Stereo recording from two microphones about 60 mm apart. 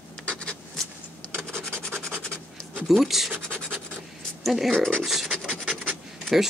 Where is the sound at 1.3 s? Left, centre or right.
Right.